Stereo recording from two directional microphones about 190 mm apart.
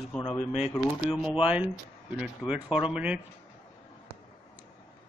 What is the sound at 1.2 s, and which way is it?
Speech, 5° right (ahead or behind).